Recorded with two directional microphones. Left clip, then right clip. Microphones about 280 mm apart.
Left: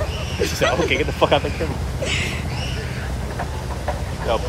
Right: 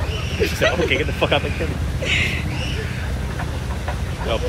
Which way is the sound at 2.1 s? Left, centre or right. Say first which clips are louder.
Right 5 dB; centre.